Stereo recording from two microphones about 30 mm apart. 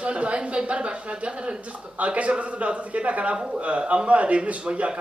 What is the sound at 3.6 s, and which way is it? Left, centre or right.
A man's voice, right.